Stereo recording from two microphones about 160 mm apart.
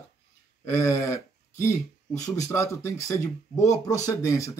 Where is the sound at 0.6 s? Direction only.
15° left (ahead or behind).